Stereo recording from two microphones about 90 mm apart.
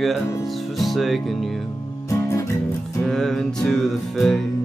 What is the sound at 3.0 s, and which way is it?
Music, 5° left (ahead or behind).